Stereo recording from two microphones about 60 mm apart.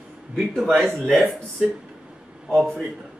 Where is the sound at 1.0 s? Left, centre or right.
Centre.